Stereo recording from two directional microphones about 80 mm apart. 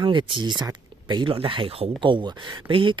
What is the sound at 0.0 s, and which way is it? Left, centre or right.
Speech, right.